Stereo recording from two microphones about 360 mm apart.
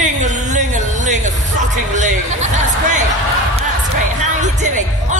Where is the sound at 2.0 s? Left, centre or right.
Centre.